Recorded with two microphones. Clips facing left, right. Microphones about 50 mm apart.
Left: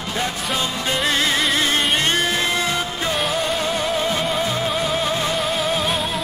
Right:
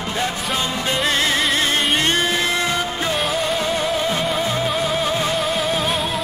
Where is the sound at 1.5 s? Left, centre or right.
Centre.